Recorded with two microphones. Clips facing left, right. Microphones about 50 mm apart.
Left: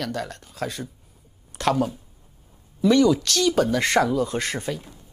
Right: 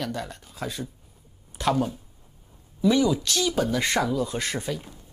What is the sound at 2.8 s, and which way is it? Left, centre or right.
A woman's voice, left.